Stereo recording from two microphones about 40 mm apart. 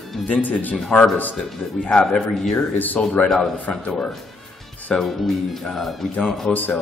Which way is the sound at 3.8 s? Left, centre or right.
Left.